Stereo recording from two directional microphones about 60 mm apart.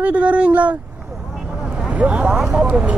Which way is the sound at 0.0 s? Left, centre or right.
Right.